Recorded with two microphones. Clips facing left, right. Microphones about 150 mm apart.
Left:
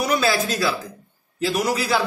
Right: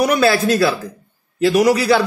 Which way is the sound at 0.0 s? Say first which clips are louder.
Right 6 dB; 65° right (ahead or behind).